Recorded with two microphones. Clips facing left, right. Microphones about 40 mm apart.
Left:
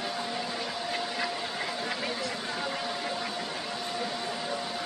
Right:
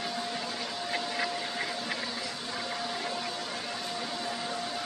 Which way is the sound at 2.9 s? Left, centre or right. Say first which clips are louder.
Left 1 dB; centre.